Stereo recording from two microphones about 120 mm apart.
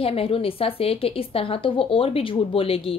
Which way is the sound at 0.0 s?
50° left (ahead or behind).